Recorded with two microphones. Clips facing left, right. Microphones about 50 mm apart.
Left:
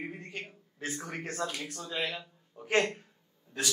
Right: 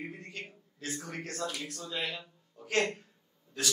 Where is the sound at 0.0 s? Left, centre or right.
Left.